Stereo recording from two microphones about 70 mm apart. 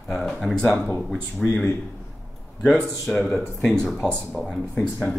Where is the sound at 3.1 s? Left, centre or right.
Centre.